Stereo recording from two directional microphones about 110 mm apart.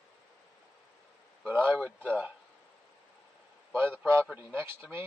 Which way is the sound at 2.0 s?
15° right (ahead or behind).